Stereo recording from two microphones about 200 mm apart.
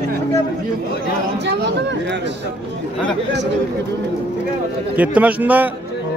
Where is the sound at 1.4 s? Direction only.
60° right (ahead or behind).